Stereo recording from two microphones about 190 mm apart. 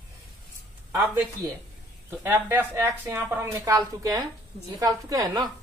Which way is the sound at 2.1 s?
10° right (ahead or behind).